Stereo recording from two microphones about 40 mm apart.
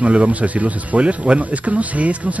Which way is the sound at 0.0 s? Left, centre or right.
Right.